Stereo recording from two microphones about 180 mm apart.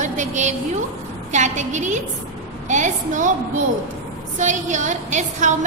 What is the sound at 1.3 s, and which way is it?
A woman's voice, 40° right (ahead or behind).